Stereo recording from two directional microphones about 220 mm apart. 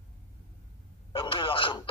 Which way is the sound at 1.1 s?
25° left (ahead or behind).